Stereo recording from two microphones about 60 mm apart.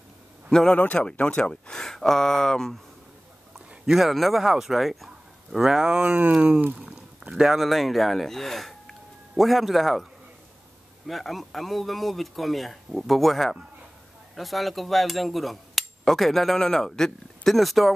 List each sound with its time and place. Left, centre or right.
0.5 s a man's voice: centre
3.5 s speech: centre
6.6 s speech: right
6.9 s speech: centre
11.1 s speech: centre